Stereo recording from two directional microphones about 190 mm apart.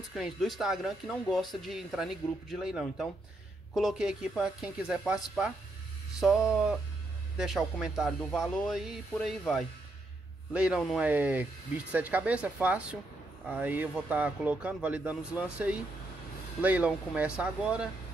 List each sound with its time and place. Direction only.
0.1 s speech: centre (ahead or behind)
10.5 s speech: 5° right (ahead or behind)